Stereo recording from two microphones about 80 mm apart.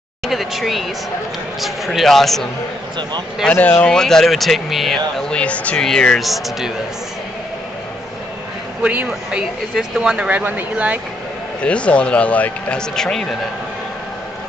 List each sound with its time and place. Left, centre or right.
0.3 s speech: centre
3.5 s speech: left
3.8 s speech: centre
5.3 s speech: centre
8.8 s speech: centre
11.6 s speech: centre